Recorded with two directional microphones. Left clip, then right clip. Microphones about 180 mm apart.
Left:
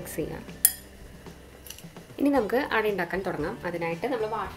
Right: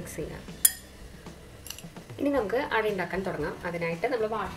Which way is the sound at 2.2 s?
45° left (ahead or behind).